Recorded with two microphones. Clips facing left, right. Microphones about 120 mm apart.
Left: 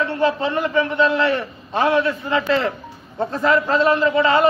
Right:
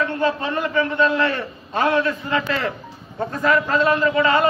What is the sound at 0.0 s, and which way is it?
A man's voice, 20° left (ahead or behind).